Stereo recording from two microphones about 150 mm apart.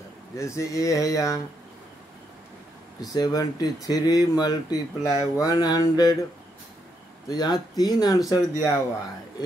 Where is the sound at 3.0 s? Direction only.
25° left (ahead or behind).